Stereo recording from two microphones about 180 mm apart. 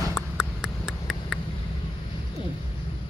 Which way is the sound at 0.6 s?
Centre (ahead or behind).